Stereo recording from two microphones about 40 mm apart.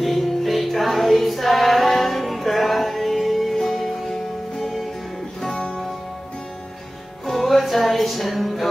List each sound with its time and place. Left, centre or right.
0.0 s music: centre
5.4 s music: centre
7.2 s music: centre